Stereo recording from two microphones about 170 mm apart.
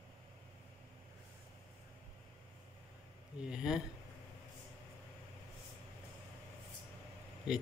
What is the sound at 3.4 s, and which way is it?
Speech, 5° right (ahead or behind).